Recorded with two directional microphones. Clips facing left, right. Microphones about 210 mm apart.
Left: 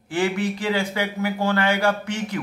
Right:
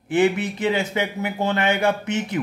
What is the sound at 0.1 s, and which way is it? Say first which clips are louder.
A man's voice: right 4 dB; 20° right (ahead or behind).